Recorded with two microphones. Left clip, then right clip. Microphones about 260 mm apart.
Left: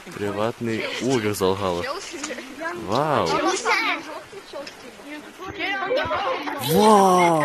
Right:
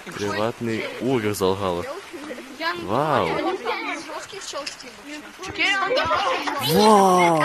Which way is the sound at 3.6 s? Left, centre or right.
Left.